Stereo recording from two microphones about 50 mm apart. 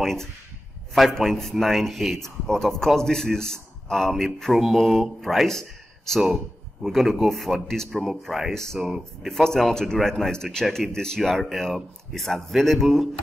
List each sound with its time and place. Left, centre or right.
0.0 s a man's voice: centre
8.0 s a man's voice: centre
9.3 s a man's voice: centre